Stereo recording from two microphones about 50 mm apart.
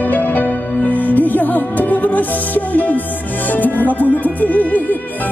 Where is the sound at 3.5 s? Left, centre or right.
Left.